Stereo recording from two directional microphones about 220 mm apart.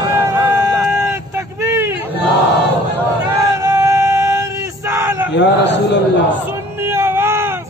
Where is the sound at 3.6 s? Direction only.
15° right (ahead or behind).